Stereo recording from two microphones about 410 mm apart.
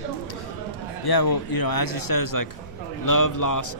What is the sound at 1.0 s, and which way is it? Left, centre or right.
A man's voice, left.